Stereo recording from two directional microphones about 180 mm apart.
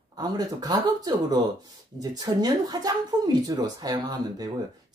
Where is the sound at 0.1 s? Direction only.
20° right (ahead or behind).